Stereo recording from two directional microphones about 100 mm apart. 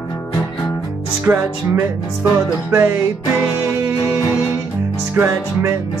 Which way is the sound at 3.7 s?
25° right (ahead or behind).